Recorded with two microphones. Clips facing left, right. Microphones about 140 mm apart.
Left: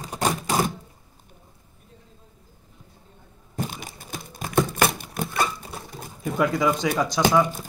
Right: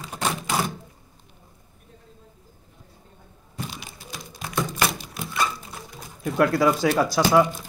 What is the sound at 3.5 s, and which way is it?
Crumpling, 50° left (ahead or behind).